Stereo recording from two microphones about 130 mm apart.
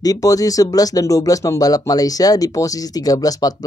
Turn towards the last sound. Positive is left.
turn(degrees=30)  # may be behind; listen again after turning